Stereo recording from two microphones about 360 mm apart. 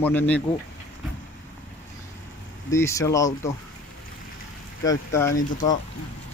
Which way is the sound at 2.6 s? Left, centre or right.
Centre.